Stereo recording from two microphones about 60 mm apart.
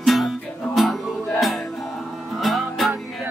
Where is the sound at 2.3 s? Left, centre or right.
Centre.